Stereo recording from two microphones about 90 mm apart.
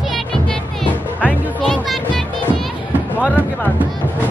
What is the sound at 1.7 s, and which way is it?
Music, 5° left (ahead or behind).